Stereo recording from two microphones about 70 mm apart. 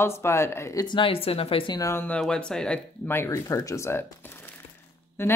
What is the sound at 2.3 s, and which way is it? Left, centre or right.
Speech, centre.